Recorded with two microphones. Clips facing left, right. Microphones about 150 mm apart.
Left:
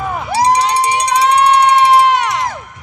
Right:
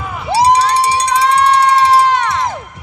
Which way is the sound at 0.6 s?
15° left (ahead or behind).